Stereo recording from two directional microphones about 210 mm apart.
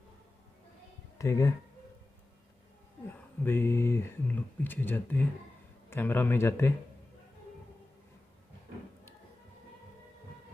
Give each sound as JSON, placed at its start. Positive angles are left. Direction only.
{"t": 1.1, "sound": "speech", "side_deg": 15}
{"t": 3.1, "sound": "speech", "side_deg": 10}